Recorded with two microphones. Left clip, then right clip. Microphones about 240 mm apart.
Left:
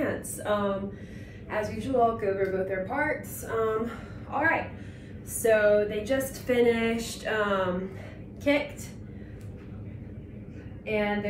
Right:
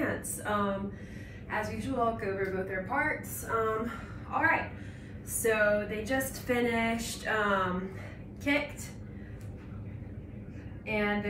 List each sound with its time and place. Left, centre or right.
0.0 s a sound: centre
1.5 s speech: centre
10.9 s speech: centre